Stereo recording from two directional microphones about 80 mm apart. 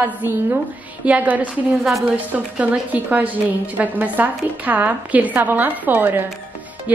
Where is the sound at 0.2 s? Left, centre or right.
Right.